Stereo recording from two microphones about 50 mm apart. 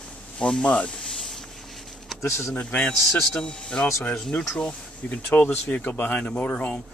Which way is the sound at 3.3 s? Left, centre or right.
Centre.